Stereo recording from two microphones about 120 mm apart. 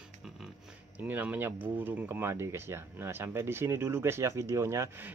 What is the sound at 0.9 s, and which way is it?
Speech, 15° right (ahead or behind).